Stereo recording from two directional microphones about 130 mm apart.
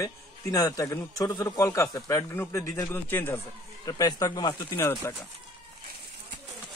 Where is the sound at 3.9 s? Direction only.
30° left (ahead or behind).